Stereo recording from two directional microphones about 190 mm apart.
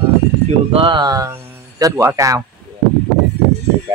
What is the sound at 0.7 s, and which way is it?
Speech, 25° right (ahead or behind).